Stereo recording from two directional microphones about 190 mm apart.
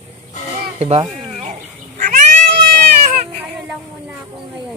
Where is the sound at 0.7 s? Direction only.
35° right (ahead or behind).